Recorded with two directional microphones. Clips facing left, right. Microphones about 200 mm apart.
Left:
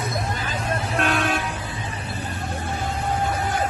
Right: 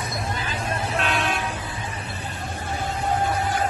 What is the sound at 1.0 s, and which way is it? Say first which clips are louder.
Vehicle: left 3 dB; 45° left (ahead or behind).